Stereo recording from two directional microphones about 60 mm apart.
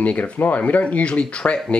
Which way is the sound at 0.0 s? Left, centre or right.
Left.